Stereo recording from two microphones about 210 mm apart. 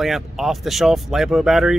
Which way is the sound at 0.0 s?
Centre (ahead or behind).